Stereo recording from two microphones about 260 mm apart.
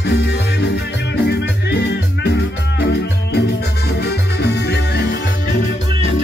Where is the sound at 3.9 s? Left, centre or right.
Left.